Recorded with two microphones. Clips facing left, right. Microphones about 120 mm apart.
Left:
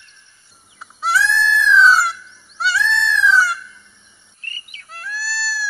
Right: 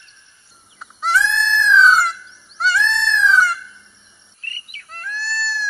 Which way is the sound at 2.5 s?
5° left (ahead or behind).